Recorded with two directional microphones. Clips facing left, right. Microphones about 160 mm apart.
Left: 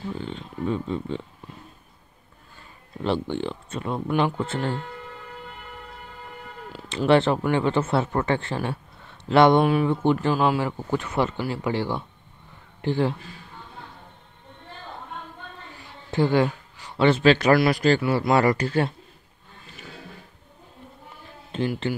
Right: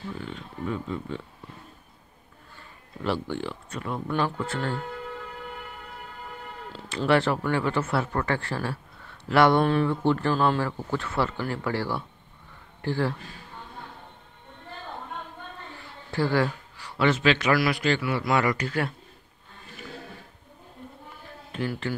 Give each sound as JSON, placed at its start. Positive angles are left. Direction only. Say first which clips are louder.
{"t": 0.1, "sound": "speech", "louder": "left 4 dB", "side_deg": 25}
{"t": 3.0, "sound": "speech", "louder": "left 3 dB", "side_deg": 25}
{"t": 7.1, "sound": "speech", "louder": "left 4 dB", "side_deg": 25}
{"t": 15.7, "sound": "speech", "louder": "left 5 dB", "side_deg": 15}
{"t": 21.5, "sound": "speech", "louder": "left 4 dB", "side_deg": 25}